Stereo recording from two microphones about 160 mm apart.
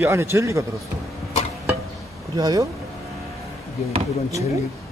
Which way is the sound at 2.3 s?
25° right (ahead or behind).